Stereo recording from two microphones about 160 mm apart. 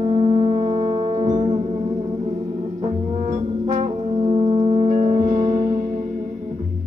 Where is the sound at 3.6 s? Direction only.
40° right (ahead or behind).